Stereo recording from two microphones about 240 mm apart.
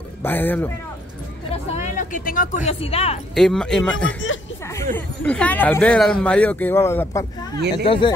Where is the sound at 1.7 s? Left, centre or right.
Left.